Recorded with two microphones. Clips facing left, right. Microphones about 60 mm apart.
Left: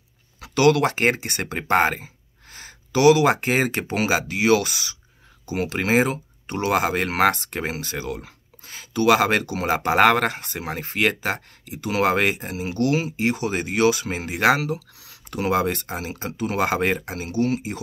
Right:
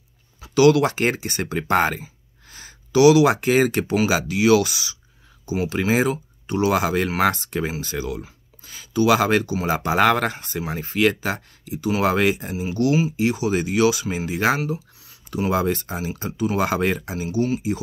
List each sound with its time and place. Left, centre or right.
0.6 s speech: left
15.2 s speech: left